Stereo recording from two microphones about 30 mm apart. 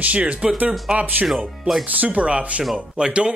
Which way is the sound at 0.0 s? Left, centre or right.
Right.